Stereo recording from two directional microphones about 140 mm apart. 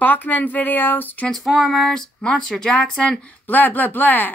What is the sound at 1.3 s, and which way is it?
Speech, centre (ahead or behind).